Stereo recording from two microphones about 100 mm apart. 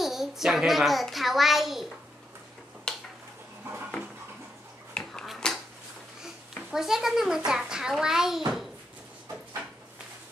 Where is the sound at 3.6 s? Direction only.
15° right (ahead or behind).